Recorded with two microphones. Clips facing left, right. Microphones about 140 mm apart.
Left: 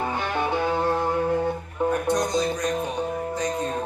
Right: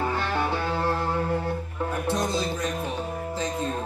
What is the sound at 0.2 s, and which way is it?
Music, 20° left (ahead or behind).